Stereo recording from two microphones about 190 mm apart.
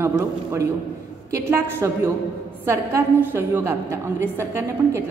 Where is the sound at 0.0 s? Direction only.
15° right (ahead or behind).